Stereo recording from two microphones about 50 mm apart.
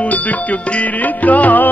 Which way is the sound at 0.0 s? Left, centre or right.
Left.